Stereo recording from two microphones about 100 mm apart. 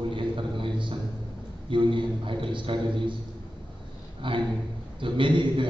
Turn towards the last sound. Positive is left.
turn(degrees=-55)  # may be behind; listen again after turning